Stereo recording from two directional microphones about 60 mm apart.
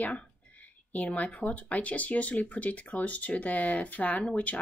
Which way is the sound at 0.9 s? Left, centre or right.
Left.